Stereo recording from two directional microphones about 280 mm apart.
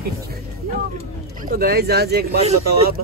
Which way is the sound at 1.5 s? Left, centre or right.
Right.